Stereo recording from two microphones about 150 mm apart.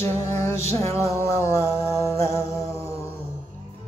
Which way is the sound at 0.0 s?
15° left (ahead or behind).